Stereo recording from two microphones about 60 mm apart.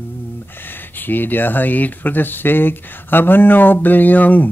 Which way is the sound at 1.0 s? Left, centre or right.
Left.